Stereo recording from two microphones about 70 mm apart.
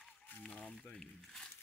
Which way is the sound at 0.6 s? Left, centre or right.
Centre.